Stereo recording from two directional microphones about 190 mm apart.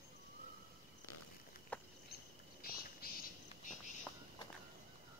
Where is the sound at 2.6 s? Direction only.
50° left (ahead or behind).